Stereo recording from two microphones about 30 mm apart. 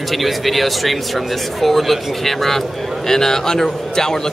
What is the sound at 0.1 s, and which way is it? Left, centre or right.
Speech, centre.